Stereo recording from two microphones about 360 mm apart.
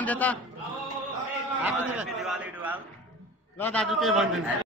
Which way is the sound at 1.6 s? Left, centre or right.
Centre.